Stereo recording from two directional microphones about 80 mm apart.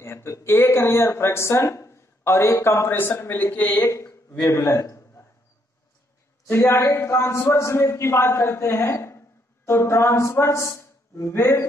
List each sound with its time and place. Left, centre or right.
0.0 s speech: left; by 3.9 s centre
3.9 s a sound: left
4.5 s a man's voice: left
6.4 s a man's voice: left